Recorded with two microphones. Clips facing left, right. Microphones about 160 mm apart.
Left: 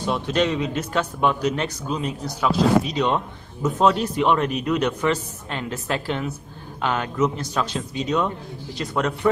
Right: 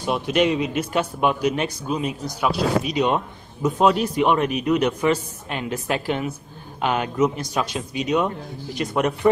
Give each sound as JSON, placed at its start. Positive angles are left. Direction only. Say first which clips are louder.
{"t": 0.0, "sound": "a man's voice", "louder": "right 2 dB", "side_deg": -15}